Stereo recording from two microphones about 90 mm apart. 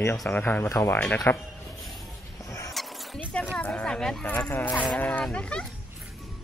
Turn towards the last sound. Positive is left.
turn(degrees=10)  # may be behind; listen again after turning